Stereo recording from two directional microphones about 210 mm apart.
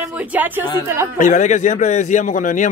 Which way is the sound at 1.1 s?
35° left (ahead or behind).